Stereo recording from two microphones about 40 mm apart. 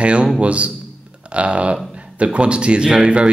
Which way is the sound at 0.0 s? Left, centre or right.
Right.